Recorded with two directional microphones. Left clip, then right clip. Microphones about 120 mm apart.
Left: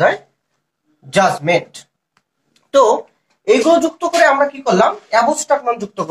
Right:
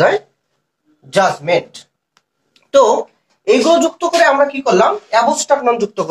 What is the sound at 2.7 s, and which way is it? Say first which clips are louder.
Speech: right 1 dB; 45° right (ahead or behind).